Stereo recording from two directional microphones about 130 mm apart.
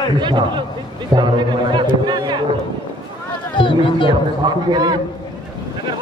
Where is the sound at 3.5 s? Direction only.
40° left (ahead or behind).